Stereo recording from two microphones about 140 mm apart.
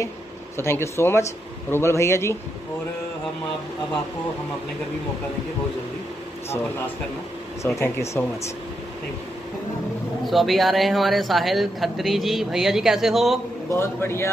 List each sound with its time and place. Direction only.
0.6 s speech: 20° left (ahead or behind)
7.6 s speech: 20° left (ahead or behind)
10.2 s speech: centre (ahead or behind)
13.7 s a man's voice: 15° left (ahead or behind)